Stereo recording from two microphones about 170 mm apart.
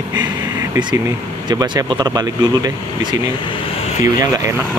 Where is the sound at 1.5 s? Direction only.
20° right (ahead or behind).